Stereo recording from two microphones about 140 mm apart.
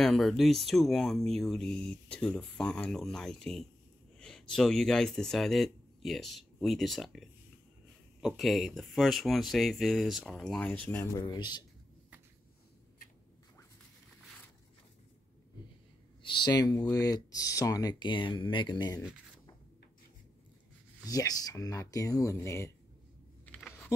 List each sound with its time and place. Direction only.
0.0 s speech: centre (ahead or behind)
11.1 s a man's voice: 30° left (ahead or behind)
16.2 s speech: 30° left (ahead or behind)
21.0 s speech: 25° left (ahead or behind)
23.4 s typing: 5° left (ahead or behind)